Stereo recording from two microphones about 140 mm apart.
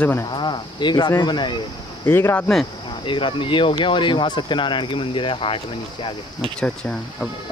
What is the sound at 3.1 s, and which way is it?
Speech, 35° left (ahead or behind).